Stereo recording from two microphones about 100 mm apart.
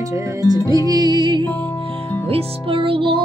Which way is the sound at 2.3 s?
65° right (ahead or behind).